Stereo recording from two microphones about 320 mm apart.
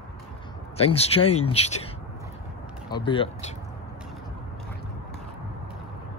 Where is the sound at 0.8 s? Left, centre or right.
Centre.